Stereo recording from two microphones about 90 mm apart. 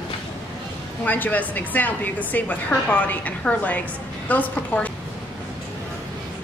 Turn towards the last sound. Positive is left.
turn(degrees=20)  # may be behind; listen again after turning